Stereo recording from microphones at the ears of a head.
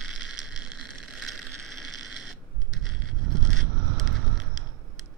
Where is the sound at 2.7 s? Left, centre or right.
Right.